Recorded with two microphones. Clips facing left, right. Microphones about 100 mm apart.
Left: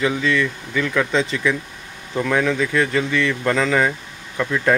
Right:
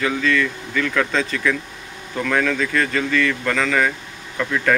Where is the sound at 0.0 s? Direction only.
20° left (ahead or behind).